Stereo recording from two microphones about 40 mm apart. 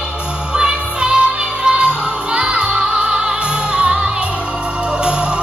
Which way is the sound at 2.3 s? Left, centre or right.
Right.